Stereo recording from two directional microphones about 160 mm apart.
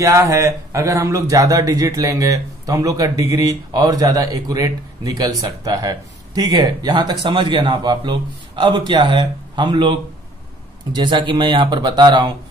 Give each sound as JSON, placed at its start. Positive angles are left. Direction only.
{"t": 0.0, "sound": "speech", "side_deg": -20}
{"t": 11.0, "sound": "speech", "side_deg": -30}